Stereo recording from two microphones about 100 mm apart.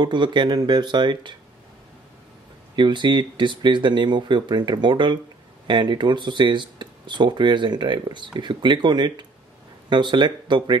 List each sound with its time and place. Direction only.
0.0 s speech: 50° right (ahead or behind)
2.7 s speech: 50° right (ahead or behind)